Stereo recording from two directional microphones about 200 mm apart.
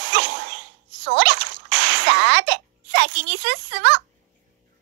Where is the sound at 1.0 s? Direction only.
60° right (ahead or behind).